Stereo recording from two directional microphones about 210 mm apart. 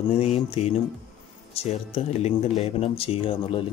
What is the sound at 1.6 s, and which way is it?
Speech, 30° left (ahead or behind).